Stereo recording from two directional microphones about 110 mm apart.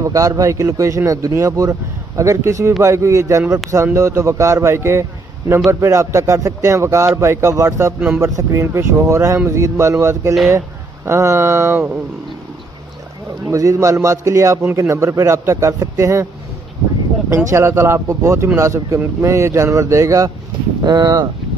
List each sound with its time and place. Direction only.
0.0 s a man's voice: 30° right (ahead or behind)
13.5 s a man's voice: 30° right (ahead or behind)
17.5 s a man's voice: 25° right (ahead or behind)
20.8 s speech: 40° right (ahead or behind)